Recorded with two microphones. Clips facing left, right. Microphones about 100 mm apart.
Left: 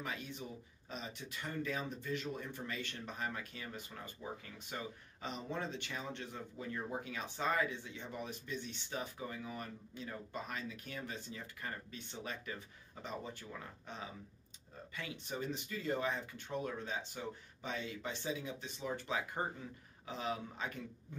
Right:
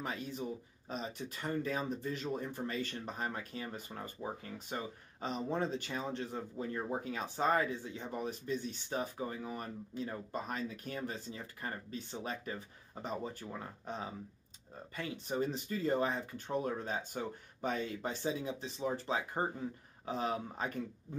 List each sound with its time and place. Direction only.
0.0 s speech: 40° right (ahead or behind)